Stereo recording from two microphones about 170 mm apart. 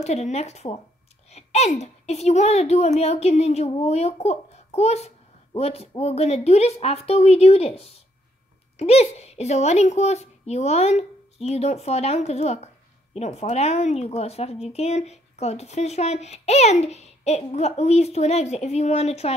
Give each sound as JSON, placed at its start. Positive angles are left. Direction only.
{"t": 0.0, "sound": "a child's voice", "side_deg": 40}